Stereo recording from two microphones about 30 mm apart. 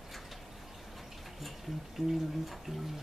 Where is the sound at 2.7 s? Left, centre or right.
Centre.